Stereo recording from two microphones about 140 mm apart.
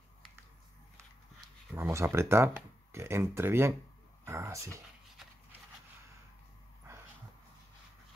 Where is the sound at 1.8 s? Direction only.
20° right (ahead or behind).